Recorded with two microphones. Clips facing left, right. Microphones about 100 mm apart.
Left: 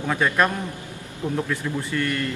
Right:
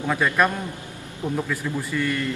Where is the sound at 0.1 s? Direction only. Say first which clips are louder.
Even; centre (ahead or behind).